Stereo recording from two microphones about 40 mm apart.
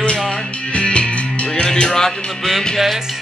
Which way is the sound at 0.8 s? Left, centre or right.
Left.